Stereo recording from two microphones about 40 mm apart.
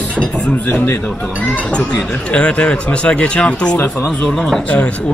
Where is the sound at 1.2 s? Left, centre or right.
Left.